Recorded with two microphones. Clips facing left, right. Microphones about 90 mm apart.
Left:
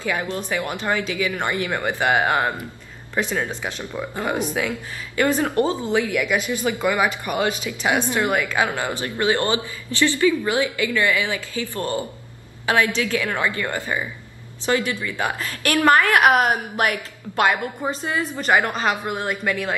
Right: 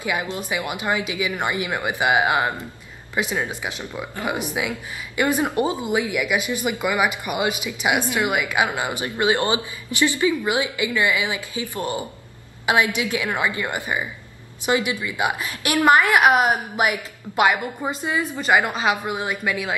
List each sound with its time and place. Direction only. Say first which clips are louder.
0.0 s speech: left 1 dB; 15° right (ahead or behind)